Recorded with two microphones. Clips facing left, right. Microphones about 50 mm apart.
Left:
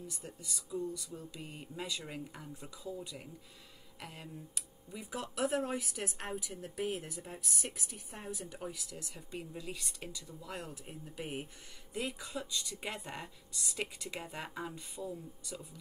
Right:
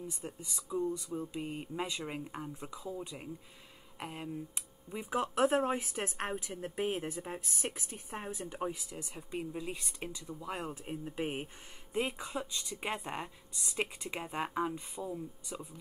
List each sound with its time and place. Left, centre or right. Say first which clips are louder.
0.1 s speech: right 3 dB; right